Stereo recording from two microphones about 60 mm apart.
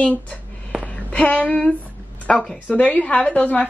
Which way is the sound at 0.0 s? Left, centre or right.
Left.